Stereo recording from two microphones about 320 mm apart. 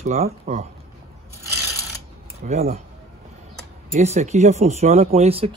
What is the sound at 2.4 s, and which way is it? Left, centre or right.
Speech, centre.